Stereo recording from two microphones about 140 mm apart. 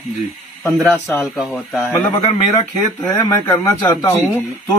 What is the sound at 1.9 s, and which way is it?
A man's voice, 20° left (ahead or behind).